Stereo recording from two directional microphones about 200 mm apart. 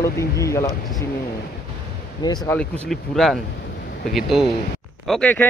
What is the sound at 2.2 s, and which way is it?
Speech, 20° left (ahead or behind).